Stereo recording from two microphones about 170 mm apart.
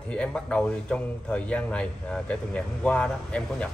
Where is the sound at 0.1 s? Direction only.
5° left (ahead or behind).